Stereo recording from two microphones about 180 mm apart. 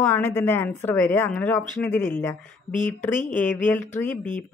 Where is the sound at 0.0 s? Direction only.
10° left (ahead or behind).